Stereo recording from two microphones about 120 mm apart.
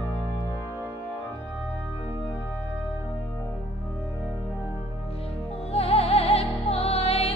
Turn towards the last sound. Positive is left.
turn(degrees=55)  # may be behind; listen again after turning